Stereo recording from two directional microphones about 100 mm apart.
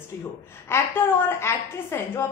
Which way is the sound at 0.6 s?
25° left (ahead or behind).